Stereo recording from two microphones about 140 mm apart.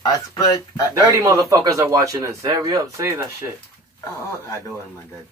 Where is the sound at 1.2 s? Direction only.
25° right (ahead or behind).